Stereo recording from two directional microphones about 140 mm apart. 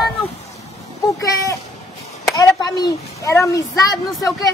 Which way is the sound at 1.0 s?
20° left (ahead or behind).